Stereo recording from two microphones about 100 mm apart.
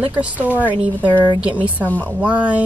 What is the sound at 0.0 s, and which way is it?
Speech, 15° right (ahead or behind).